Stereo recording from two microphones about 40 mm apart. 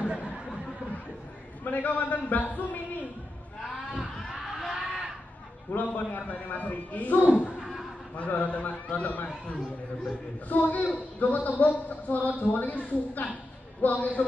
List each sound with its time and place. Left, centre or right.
0.0 s chatter: right
1.6 s a man's voice: left
4.4 s a sound: centre
5.7 s a man's voice: left
10.5 s a man's voice: left